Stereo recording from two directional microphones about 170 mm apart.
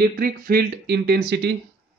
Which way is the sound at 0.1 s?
60° right (ahead or behind).